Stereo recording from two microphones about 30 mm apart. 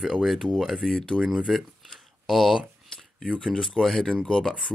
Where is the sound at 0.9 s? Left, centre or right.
Left.